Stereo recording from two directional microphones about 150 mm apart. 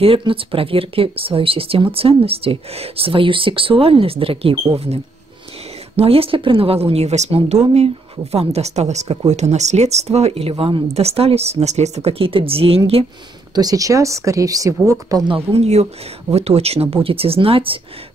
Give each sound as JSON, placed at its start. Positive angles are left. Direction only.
{"t": 0.0, "sound": "a woman's voice", "side_deg": -35}
{"t": 13.6, "sound": "speech", "side_deg": -25}
{"t": 15.5, "sound": "speech", "side_deg": -45}